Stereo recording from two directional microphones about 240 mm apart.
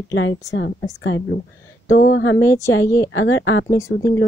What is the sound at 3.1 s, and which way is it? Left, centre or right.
Speech, left.